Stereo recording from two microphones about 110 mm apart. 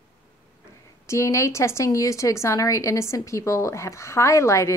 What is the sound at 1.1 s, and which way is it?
A woman's voice, 30° left (ahead or behind).